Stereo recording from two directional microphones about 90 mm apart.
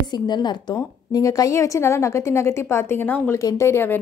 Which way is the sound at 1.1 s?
40° left (ahead or behind).